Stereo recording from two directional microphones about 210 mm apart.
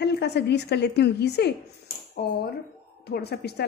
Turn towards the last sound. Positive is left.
turn(degrees=50)  # may be behind; listen again after turning